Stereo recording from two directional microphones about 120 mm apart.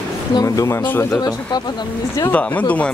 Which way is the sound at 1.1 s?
30° left (ahead or behind).